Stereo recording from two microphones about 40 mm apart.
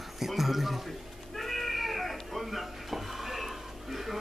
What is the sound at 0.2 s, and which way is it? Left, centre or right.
Speech, centre.